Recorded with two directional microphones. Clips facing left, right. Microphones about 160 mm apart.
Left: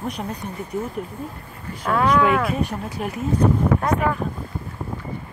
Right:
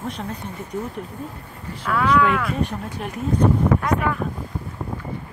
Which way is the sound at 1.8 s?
40° left (ahead or behind).